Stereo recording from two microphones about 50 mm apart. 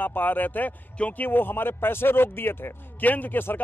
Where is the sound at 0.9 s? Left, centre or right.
Left.